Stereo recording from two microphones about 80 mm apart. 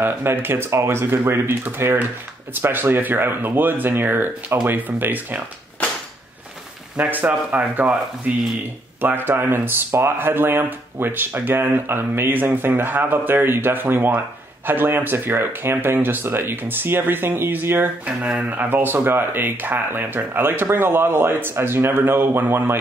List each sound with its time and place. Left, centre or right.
0.0 s speech: right
7.0 s speech: right
18.0 s speech: centre; by 22.8 s right